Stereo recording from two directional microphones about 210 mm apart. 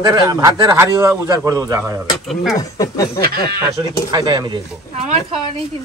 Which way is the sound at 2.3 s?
Centre (ahead or behind).